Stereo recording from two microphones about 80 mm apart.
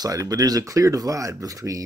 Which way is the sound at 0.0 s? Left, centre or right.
Right.